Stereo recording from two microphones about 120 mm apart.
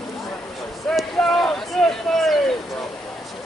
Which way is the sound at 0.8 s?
5° left (ahead or behind).